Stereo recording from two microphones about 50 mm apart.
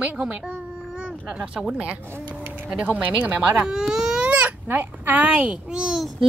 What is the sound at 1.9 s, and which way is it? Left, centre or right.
Speech, right.